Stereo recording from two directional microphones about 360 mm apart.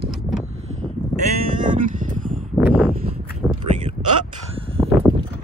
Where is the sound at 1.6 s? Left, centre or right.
Right.